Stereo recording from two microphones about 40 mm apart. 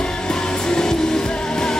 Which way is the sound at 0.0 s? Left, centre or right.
Centre.